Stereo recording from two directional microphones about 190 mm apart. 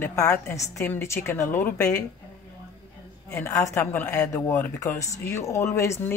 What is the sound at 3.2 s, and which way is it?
Speech, 15° left (ahead or behind).